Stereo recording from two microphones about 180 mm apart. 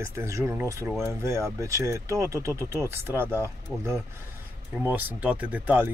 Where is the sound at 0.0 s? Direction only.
15° right (ahead or behind).